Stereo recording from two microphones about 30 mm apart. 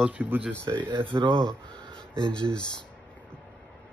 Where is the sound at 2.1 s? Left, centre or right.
Left.